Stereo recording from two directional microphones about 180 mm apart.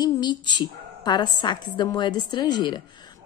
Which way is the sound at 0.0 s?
25° left (ahead or behind).